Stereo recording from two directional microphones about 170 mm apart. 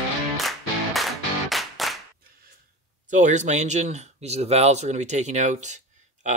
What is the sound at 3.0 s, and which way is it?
Speech, 45° right (ahead or behind).